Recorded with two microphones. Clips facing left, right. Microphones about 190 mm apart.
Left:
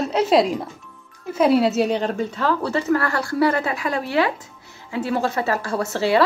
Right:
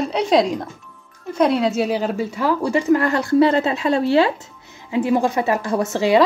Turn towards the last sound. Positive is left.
turn(degrees=-15)  # may be behind; listen again after turning